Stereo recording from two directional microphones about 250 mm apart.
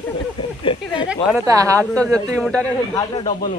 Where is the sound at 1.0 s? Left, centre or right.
Centre.